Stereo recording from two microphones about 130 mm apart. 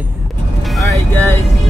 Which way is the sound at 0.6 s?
Centre (ahead or behind).